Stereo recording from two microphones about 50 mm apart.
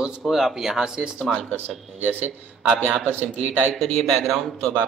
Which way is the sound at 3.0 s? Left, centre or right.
Right.